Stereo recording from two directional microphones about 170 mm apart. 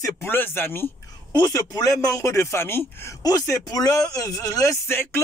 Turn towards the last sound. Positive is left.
turn(degrees=15)  # may be behind; listen again after turning